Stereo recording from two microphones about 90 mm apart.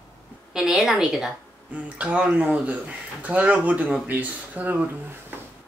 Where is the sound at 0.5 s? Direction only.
5° right (ahead or behind).